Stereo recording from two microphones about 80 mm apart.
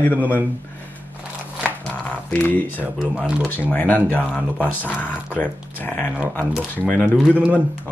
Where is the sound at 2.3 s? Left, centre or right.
Left.